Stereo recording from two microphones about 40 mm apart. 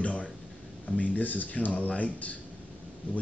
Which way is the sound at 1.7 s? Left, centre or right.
Left.